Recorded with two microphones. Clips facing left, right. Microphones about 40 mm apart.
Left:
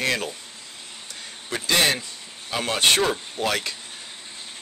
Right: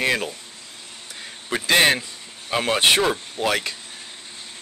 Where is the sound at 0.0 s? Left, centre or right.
Centre.